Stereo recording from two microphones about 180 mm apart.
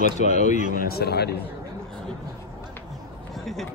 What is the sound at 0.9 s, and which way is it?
Speech, 60° left (ahead or behind).